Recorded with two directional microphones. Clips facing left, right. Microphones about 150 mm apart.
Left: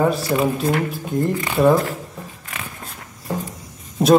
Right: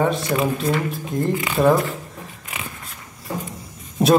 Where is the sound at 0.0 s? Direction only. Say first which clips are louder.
Left 2 dB; 5° left (ahead or behind).